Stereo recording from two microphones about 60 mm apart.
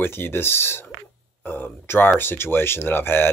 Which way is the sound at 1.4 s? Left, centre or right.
Left.